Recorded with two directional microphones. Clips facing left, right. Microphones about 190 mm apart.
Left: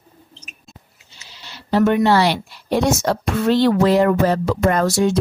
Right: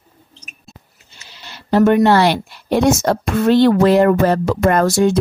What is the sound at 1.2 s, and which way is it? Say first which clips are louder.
A woman's voice: right 2 dB; 55° right (ahead or behind).